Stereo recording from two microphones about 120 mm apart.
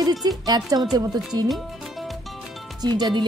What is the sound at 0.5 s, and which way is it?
Speech, 35° right (ahead or behind).